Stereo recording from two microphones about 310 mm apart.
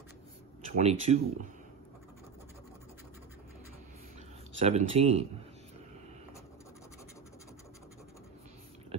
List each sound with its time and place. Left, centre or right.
0.7 s speech: right
4.6 s speech: centre